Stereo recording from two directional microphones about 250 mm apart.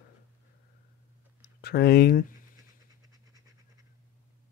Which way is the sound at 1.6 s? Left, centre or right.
Left.